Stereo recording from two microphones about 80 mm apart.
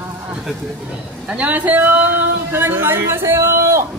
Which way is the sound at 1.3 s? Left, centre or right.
Centre.